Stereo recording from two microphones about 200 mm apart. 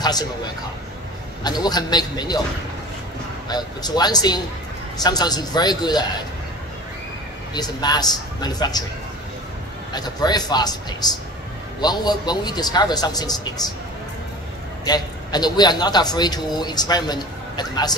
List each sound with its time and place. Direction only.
0.0 s a sound: 20° left (ahead or behind)
1.6 s a man's voice: 20° left (ahead or behind)
3.4 s a man's voice: 20° left (ahead or behind)
7.5 s a man's voice: 20° left (ahead or behind)
9.9 s a man's voice: 20° left (ahead or behind)
14.9 s a man's voice: 20° left (ahead or behind)